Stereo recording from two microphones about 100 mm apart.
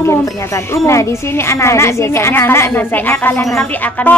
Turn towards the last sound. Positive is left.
turn(degrees=25)  # may be behind; listen again after turning